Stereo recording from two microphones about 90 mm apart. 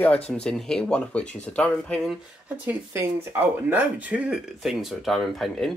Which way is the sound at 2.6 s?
25° right (ahead or behind).